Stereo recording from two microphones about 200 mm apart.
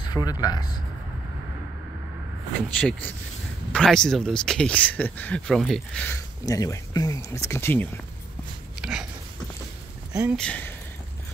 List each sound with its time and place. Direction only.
0.1 s speech: 20° left (ahead or behind)
2.7 s speech: 5° left (ahead or behind)
6.0 s speech: 15° left (ahead or behind)
8.8 s a sound: 5° right (ahead or behind)
10.2 s speech: 5° left (ahead or behind)